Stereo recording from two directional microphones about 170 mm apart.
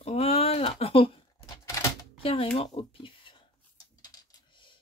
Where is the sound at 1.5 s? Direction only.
20° left (ahead or behind).